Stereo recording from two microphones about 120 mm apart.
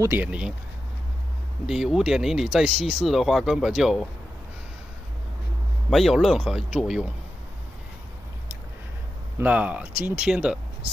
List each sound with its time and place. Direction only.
0.1 s speech: 10° right (ahead or behind)
1.7 s speech: 5° right (ahead or behind)
5.9 s speech: centre (ahead or behind)
9.4 s speech: 10° right (ahead or behind)